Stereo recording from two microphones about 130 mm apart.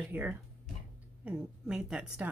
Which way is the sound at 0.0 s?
15° right (ahead or behind).